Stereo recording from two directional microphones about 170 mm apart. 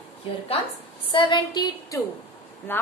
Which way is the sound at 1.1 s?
30° left (ahead or behind).